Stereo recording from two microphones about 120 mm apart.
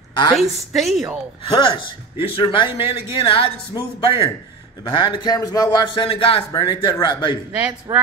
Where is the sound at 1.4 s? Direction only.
45° left (ahead or behind).